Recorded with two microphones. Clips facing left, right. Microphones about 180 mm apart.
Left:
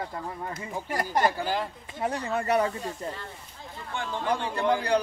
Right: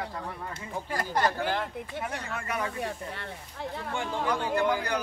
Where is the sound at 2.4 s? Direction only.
35° left (ahead or behind).